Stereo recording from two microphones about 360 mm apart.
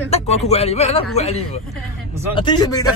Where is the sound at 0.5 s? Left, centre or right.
Centre.